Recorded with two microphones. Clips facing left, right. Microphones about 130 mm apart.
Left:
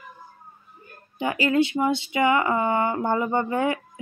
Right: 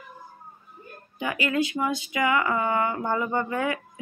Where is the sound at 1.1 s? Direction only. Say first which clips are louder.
Left 4 dB; 30° left (ahead or behind).